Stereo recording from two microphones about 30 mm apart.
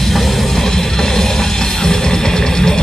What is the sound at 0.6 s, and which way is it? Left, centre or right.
Music, centre.